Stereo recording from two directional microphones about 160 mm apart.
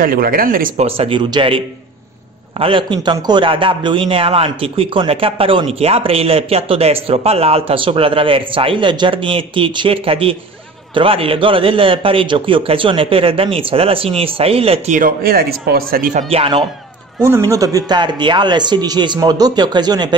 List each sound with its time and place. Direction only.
0.0 s speech: 60° right (ahead or behind)
0.7 s a man's voice: 35° right (ahead or behind)
2.6 s a man's voice: 30° right (ahead or behind)
15.0 s speech: 65° right (ahead or behind); by 16.6 s 35° right (ahead or behind)
17.2 s speech: 20° right (ahead or behind)